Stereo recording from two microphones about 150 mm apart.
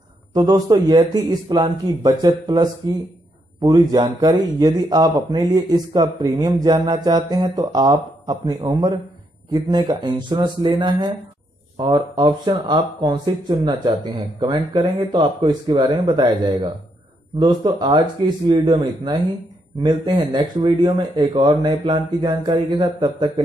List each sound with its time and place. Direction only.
0.3 s a man's voice: 25° right (ahead or behind)
19.8 s a man's voice: 30° right (ahead or behind)